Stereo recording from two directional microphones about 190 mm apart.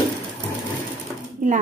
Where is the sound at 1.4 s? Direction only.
45° right (ahead or behind).